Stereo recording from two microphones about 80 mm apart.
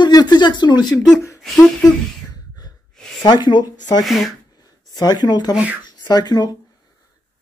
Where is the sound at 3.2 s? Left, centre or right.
Left.